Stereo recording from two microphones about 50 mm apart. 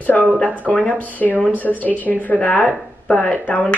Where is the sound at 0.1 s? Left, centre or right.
Left.